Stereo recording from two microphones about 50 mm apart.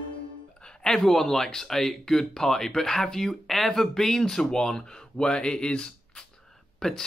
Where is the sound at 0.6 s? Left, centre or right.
Centre.